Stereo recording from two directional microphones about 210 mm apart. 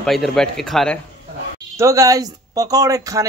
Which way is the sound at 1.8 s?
15° right (ahead or behind).